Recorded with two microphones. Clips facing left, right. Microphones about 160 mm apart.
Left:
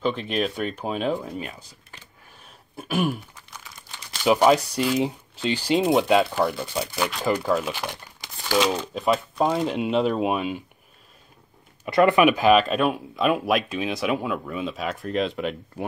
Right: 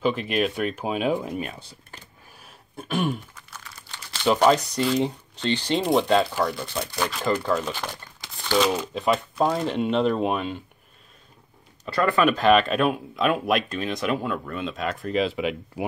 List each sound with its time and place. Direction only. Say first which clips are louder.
0.0 s speech: right 1 dB; 5° right (ahead or behind)
2.4 s a sound: even; 5° left (ahead or behind)
4.2 s speech: left 1 dB; 10° left (ahead or behind)
8.6 s speech: even; 5° right (ahead or behind)
11.8 s speech: left 4 dB; 20° left (ahead or behind); by 15.8 s 5° right (ahead or behind)